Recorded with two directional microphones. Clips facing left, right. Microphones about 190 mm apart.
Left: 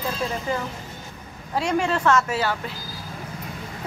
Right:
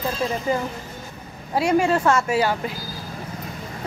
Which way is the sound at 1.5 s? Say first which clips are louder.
Right 4 dB; 10° right (ahead or behind).